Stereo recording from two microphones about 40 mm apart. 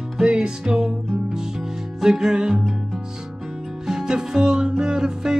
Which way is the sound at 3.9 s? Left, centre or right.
Centre.